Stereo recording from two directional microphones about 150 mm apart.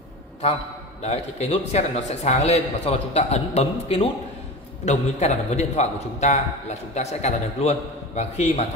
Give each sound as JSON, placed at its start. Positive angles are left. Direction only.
{"t": 1.0, "sound": "a man's voice", "side_deg": 45}